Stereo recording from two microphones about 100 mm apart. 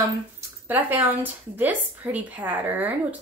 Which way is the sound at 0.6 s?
20° right (ahead or behind).